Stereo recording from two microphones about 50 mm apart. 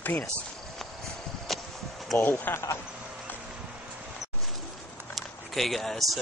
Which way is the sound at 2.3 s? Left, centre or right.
Left.